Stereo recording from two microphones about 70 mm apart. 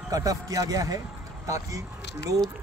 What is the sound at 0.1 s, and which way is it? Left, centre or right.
A man's voice, right.